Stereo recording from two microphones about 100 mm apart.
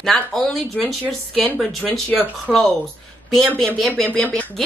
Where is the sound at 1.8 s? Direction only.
15° left (ahead or behind).